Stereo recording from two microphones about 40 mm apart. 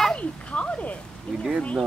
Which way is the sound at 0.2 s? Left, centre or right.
Left.